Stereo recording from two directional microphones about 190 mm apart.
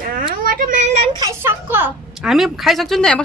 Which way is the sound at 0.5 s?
45° right (ahead or behind).